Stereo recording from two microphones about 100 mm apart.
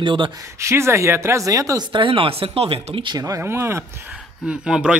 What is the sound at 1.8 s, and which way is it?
Speech, 55° right (ahead or behind).